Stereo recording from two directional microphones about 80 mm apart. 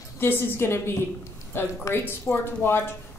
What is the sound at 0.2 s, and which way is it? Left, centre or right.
Speech, left.